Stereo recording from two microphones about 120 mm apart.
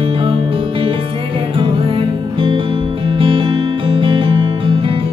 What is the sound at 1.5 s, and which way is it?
Music, 45° right (ahead or behind).